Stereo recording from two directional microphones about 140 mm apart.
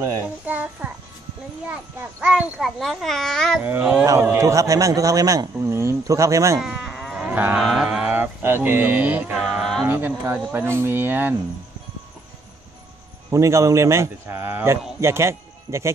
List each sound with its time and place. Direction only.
0.5 s a child's voice: 10° right (ahead or behind)
3.6 s a man's voice: 10° right (ahead or behind)
6.6 s sheep: 5° right (ahead or behind)
7.2 s cattle: 10° right (ahead or behind)
9.4 s music: centre (ahead or behind)
9.8 s speech: 15° right (ahead or behind)
13.3 s a man's voice: 20° right (ahead or behind)